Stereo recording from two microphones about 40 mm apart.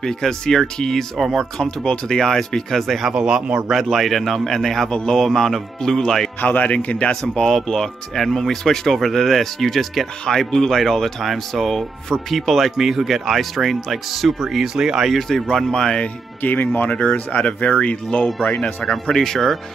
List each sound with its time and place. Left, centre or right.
0.0 s speech: centre
1.1 s speech: centre
1.6 s speech: centre
3.1 s speech: centre
3.6 s speech: centre
6.4 s speech: left
7.4 s speech: centre
14.8 s speech: centre
15.0 s speech: centre
16.4 s speech: left
17.4 s speech: left
18.9 s speech: centre